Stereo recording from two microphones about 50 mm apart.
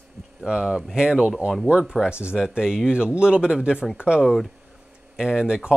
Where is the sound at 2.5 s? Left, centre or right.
Centre.